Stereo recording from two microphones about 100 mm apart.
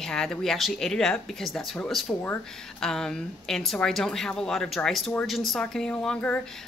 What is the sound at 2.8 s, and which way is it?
Speech, 5° left (ahead or behind).